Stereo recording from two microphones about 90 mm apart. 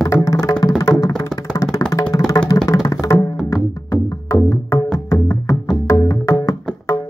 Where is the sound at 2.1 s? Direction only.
40° left (ahead or behind).